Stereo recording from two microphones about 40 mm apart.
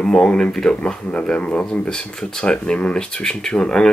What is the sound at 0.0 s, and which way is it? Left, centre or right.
Speech, left.